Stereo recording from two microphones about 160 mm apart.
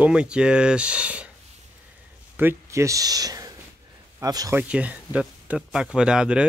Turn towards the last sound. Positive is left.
turn(degrees=-5)  # may be behind; listen again after turning